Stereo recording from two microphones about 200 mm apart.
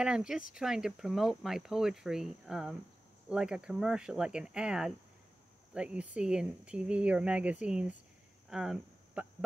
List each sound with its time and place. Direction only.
0.0 s speech: 5° right (ahead or behind)
8.5 s cricket: 5° right (ahead or behind)